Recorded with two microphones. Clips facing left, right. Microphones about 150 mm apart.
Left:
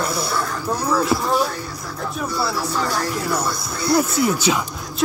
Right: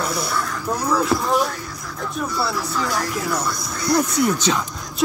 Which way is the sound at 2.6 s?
30° left (ahead or behind).